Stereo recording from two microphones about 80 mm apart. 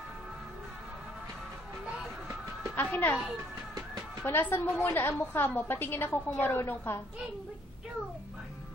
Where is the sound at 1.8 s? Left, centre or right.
Centre.